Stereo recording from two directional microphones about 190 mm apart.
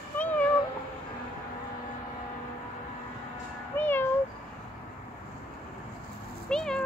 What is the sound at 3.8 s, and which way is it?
Cat, 10° left (ahead or behind).